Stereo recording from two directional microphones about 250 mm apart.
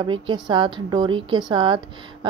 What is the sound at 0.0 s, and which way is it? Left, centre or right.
A woman's voice, centre.